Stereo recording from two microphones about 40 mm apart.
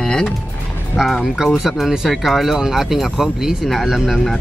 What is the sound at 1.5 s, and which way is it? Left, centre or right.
Speech, centre.